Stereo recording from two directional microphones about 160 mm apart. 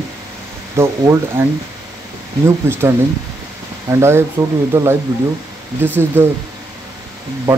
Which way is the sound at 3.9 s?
15° right (ahead or behind).